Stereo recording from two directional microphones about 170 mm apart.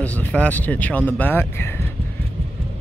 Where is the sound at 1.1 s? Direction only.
10° left (ahead or behind).